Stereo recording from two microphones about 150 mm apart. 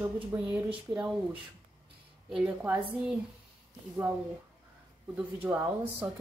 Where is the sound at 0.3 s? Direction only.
10° right (ahead or behind).